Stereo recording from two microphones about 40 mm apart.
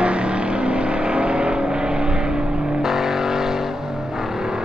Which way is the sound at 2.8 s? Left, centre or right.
Centre.